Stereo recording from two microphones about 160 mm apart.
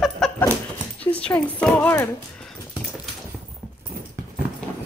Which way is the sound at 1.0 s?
10° left (ahead or behind).